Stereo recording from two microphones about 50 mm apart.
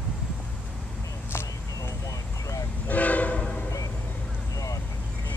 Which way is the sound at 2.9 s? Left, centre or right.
Left.